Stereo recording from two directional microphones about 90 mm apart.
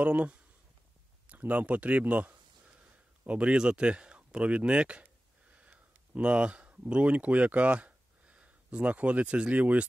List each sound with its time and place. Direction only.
0.0 s speech: 15° right (ahead or behind)